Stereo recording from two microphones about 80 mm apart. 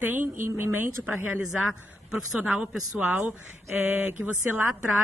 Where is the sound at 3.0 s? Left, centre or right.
Right.